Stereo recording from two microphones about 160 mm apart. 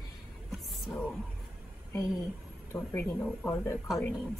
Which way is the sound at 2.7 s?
15° left (ahead or behind).